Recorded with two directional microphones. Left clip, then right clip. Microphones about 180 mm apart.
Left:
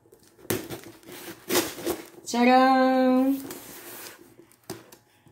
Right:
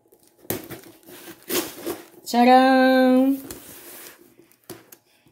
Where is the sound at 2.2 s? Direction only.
60° right (ahead or behind).